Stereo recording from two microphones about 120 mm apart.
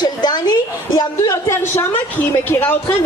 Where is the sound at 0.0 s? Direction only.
35° left (ahead or behind).